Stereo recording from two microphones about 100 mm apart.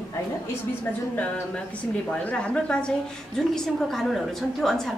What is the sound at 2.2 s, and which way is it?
A woman's voice, 15° left (ahead or behind).